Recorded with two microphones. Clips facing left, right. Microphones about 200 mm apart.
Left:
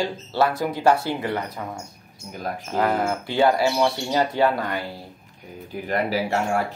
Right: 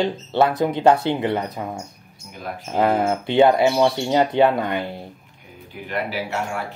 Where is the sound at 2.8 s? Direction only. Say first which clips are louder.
Right 4 dB; 25° right (ahead or behind).